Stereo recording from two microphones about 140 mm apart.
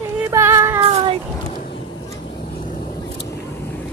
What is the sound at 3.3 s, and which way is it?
Vehicle, 15° left (ahead or behind).